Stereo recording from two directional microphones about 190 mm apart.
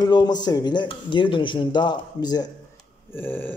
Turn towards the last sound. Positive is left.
turn(degrees=10)  # may be behind; listen again after turning